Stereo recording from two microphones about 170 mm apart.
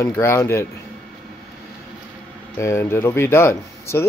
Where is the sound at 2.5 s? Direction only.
15° left (ahead or behind).